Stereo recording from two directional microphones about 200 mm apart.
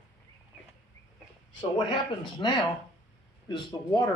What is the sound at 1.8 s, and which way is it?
Speech, 25° left (ahead or behind).